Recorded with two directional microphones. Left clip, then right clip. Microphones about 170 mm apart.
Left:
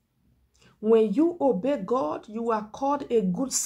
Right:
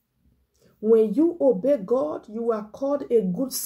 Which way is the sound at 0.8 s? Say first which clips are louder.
Right 2 dB; 10° left (ahead or behind).